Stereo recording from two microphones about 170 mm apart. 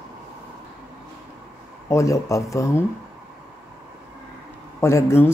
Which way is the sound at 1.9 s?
20° left (ahead or behind).